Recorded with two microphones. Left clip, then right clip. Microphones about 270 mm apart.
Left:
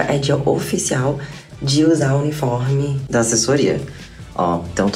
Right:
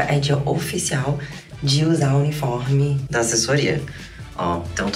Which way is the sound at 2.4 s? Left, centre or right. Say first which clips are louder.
Left 5 dB; left.